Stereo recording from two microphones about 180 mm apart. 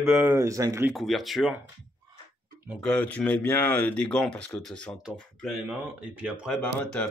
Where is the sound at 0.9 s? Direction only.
Centre (ahead or behind).